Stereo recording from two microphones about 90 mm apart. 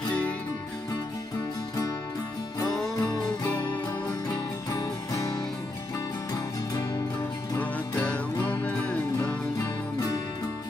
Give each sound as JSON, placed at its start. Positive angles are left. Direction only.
{"t": 3.0, "sound": "music", "side_deg": 45}
{"t": 4.6, "sound": "music", "side_deg": 40}
{"t": 8.5, "sound": "music", "side_deg": 15}
{"t": 9.6, "sound": "music", "side_deg": 40}